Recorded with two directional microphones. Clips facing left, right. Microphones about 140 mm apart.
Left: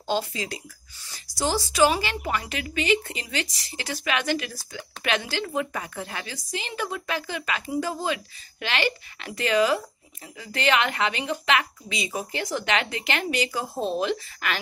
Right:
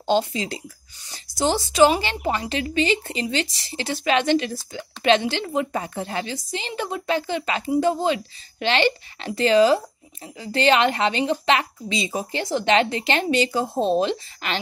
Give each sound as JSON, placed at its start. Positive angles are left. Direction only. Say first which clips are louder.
{"t": 0.0, "sound": "speech", "louder": "right 6 dB", "side_deg": -25}